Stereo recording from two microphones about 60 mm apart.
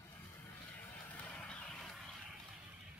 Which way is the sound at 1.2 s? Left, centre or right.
Left.